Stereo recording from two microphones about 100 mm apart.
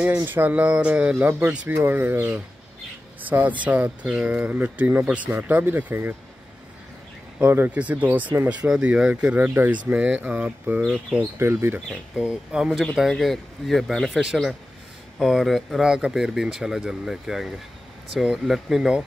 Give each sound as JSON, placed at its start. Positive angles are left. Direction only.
{"t": 0.0, "sound": "speech", "side_deg": -20}
{"t": 7.3, "sound": "speech", "side_deg": -20}
{"t": 11.3, "sound": "speech", "side_deg": -25}
{"t": 12.2, "sound": "speech", "side_deg": -10}